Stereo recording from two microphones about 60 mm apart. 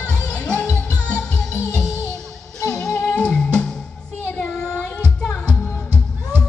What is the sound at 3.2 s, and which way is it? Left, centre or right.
Music, centre.